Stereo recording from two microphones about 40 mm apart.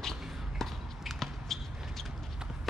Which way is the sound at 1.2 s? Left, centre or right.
Centre.